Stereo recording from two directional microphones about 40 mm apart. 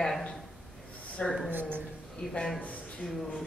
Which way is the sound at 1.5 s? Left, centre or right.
Right.